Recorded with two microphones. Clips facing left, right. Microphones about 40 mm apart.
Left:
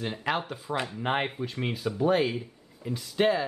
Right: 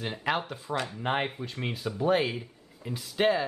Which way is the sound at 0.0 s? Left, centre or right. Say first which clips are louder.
Even; centre.